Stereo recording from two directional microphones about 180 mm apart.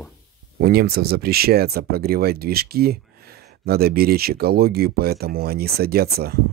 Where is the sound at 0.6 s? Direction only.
60° right (ahead or behind).